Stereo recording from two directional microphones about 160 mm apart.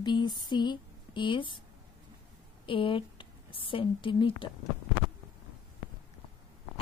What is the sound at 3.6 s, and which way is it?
Speech, 30° left (ahead or behind).